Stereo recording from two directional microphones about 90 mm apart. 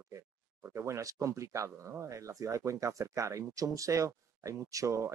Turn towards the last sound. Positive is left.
turn(degrees=-35)  # may be behind; listen again after turning